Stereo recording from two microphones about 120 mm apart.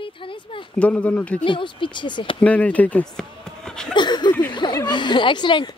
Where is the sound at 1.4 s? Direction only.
45° left (ahead or behind).